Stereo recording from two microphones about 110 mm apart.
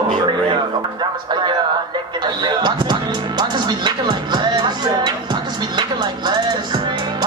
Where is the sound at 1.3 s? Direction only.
40° right (ahead or behind).